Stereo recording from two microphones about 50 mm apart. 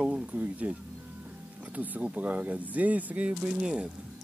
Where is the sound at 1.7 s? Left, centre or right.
Right.